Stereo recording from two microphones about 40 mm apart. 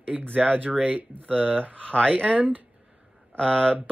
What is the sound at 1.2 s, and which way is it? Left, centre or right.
Speech, left.